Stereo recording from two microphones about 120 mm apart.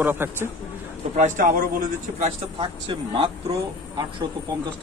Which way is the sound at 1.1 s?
90° right.